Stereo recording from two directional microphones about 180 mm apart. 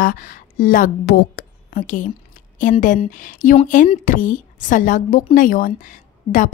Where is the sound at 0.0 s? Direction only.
50° left (ahead or behind).